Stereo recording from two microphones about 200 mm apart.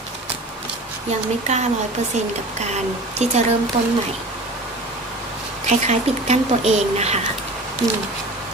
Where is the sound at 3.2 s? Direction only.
35° right (ahead or behind).